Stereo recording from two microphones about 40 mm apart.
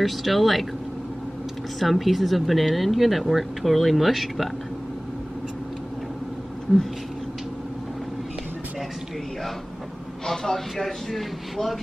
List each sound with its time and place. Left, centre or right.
0.0 s speech: centre
1.8 s speech: centre
10.2 s speech: centre